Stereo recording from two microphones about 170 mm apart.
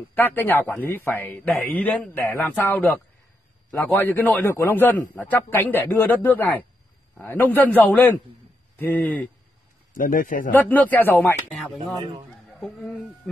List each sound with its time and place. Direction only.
0.1 s speech: 10° left (ahead or behind)
9.9 s a man's voice: 55° left (ahead or behind)
10.5 s speech: 10° left (ahead or behind)
11.5 s a sound: centre (ahead or behind)